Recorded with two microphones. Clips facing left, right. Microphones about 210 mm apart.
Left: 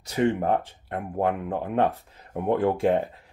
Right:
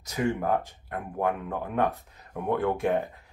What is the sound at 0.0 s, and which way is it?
Speech, 30° left (ahead or behind).